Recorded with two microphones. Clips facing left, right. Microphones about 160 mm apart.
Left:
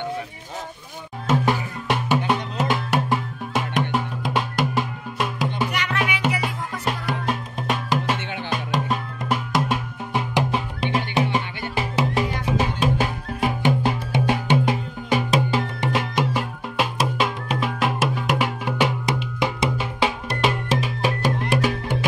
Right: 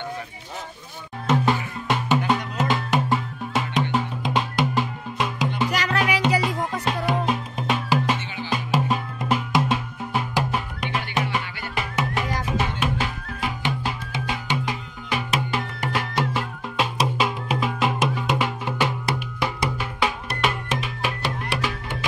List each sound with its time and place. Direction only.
1.4 s music: 10° left (ahead or behind)
5.7 s music: 35° right (ahead or behind)
7.1 s music: centre (ahead or behind)
8.2 s music: 65° left (ahead or behind)
8.5 s music: 5° right (ahead or behind)
10.3 s music: 25° left (ahead or behind); by 14.7 s 55° left (ahead or behind)
14.7 s music: 35° left (ahead or behind)
15.5 s music: 20° left (ahead or behind)
20.3 s music: 35° left (ahead or behind)